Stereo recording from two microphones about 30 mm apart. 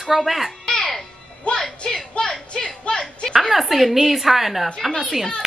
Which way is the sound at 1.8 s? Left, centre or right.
Left.